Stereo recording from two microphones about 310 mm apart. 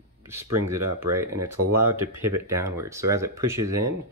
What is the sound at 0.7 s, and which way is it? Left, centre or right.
Speech, centre.